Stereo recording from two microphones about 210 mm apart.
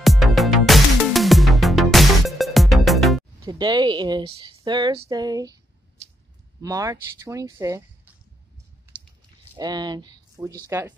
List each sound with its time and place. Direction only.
0.0 s music: centre (ahead or behind)
3.4 s speech: 20° right (ahead or behind)
9.6 s speech: 20° right (ahead or behind)